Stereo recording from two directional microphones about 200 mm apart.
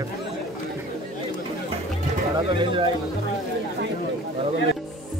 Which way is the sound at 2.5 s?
25° right (ahead or behind).